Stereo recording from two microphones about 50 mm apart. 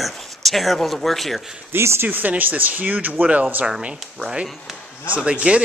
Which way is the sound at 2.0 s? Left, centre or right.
Right.